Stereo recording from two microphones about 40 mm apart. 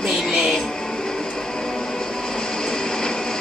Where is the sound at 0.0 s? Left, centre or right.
Centre.